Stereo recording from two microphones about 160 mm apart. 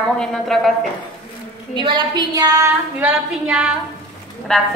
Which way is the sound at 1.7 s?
30° right (ahead or behind).